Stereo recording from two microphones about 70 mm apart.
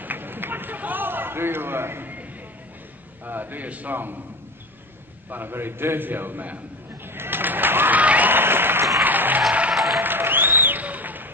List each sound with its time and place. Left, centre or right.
0.0 s a sound: right
3.3 s a man's voice: right
5.3 s a man's voice: right
7.1 s applause: right
9.0 s music: right
9.5 s applause: centre
9.9 s applause: right